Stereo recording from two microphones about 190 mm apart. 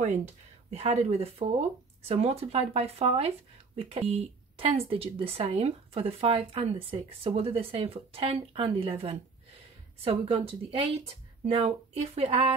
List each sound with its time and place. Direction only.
0.0 s a woman's voice: 40° right (ahead or behind)